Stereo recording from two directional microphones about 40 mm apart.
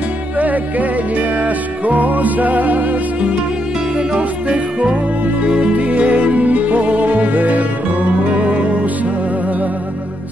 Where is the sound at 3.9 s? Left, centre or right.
Right.